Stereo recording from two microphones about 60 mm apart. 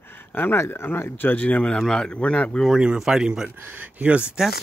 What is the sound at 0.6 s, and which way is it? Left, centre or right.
Speech, left.